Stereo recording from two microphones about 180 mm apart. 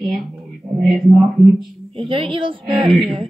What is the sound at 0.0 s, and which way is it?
Speech, centre (ahead or behind).